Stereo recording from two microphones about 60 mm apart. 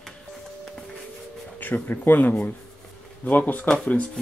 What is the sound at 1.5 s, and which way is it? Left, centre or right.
Speech, left.